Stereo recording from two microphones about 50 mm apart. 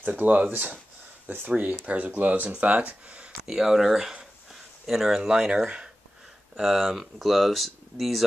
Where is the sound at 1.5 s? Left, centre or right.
Right.